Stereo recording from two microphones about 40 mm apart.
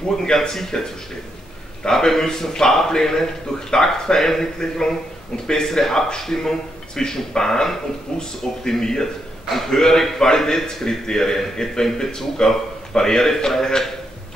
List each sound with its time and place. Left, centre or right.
0.2 s a man's voice: centre
1.9 s a man's voice: centre